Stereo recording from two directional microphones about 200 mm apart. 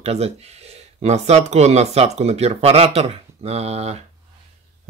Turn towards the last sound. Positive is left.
turn(degrees=-30)  # may be behind; listen again after turning